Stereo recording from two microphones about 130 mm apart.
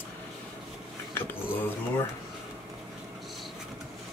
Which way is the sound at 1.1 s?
15° left (ahead or behind).